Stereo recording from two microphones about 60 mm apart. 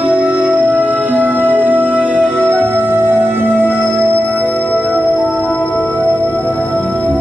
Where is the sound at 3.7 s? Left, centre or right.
Centre.